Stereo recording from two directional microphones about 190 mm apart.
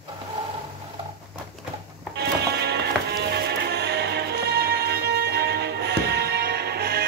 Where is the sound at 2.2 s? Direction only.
60° right (ahead or behind).